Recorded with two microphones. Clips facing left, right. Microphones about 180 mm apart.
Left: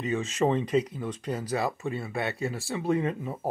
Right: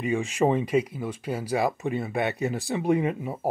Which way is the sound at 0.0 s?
10° right (ahead or behind).